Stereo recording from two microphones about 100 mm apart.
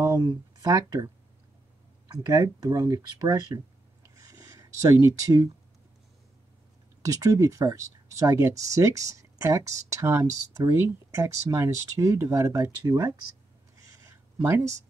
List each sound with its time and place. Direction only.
0.0 s speech: 45° right (ahead or behind)
2.3 s speech: 35° right (ahead or behind)
7.0 s speech: 35° right (ahead or behind)
12.8 s speech: 40° right (ahead or behind)
14.0 s a sound: 30° right (ahead or behind)